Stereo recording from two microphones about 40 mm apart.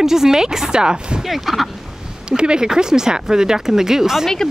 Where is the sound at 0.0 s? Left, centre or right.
Centre.